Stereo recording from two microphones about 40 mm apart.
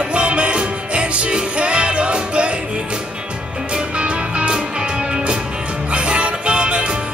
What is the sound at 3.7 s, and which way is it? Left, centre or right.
Music, right.